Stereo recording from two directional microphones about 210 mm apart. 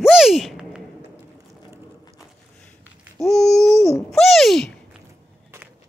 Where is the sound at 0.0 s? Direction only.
Centre (ahead or behind).